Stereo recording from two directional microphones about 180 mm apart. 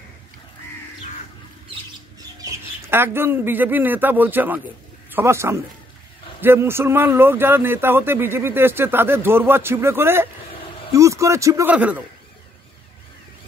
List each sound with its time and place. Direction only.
2.1 s a man's voice: 15° right (ahead or behind)